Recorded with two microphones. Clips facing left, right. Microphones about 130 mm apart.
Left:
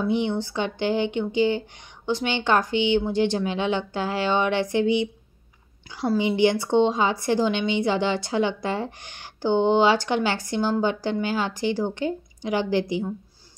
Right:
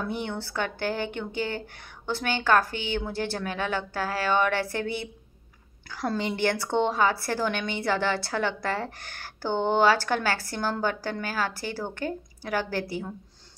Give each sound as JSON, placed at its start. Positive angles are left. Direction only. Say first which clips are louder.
{"t": 0.0, "sound": "a woman's voice", "louder": "left 8 dB", "side_deg": 15}